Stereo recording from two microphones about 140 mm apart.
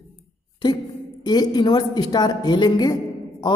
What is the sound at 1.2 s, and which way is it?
A man's voice, 30° left (ahead or behind).